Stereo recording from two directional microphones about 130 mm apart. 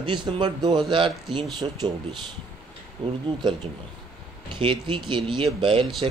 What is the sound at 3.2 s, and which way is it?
Speech, 35° right (ahead or behind).